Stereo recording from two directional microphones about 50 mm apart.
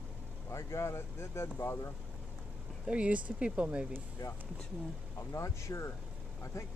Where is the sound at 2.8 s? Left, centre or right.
Right.